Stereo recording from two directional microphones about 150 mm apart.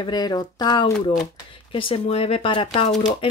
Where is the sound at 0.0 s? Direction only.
30° left (ahead or behind).